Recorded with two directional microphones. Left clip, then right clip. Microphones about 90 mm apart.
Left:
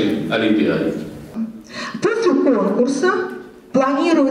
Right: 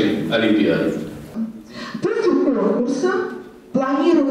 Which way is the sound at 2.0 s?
30° left (ahead or behind).